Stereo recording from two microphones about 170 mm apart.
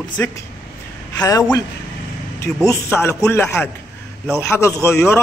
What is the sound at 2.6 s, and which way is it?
A man's voice, 15° left (ahead or behind).